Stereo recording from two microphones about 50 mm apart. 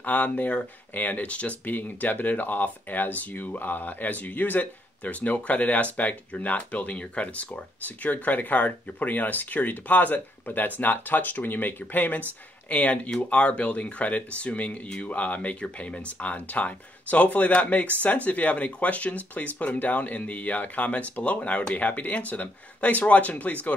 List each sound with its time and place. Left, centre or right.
0.0 s speech: left
1.6 s speech: left